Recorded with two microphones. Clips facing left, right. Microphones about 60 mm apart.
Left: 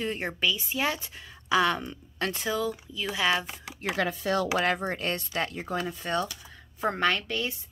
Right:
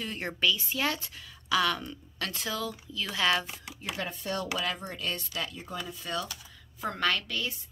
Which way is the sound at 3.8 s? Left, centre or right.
Left.